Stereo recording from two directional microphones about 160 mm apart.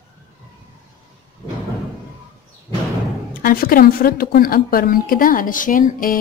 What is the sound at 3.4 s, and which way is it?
A woman's voice, 65° left (ahead or behind).